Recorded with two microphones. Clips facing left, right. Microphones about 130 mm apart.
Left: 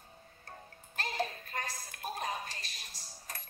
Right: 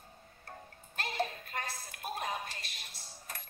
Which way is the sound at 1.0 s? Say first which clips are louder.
Right 1 dB; 40° left (ahead or behind).